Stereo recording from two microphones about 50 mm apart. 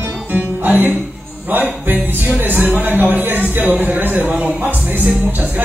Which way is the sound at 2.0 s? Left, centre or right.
Right.